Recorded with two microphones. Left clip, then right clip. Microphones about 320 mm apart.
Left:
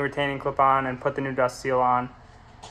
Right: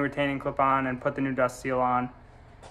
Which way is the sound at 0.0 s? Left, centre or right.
Left.